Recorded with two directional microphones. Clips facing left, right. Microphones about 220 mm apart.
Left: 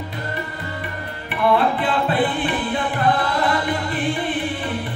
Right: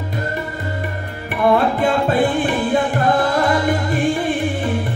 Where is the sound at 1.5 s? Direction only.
45° right (ahead or behind).